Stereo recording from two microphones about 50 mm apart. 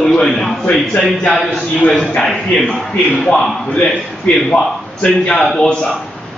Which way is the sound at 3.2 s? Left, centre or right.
Centre.